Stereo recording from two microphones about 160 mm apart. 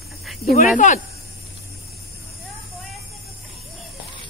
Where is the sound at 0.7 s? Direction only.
50° left (ahead or behind).